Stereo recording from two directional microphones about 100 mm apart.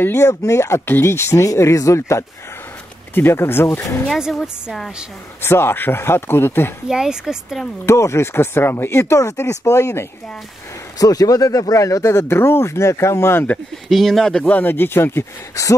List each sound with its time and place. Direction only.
0.0 s speech: 30° left (ahead or behind)
4.1 s a woman's voice: centre (ahead or behind)
5.4 s speech: 25° left (ahead or behind)
6.9 s speech: 5° right (ahead or behind)
7.8 s speech: 30° left (ahead or behind)
13.8 s speech: centre (ahead or behind); by 15.7 s 30° left (ahead or behind)